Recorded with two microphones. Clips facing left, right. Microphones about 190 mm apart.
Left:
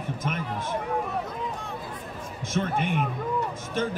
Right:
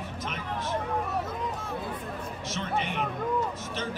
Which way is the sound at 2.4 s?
50° left (ahead or behind).